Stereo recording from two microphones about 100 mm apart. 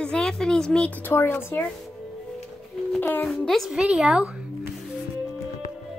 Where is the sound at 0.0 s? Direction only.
10° left (ahead or behind).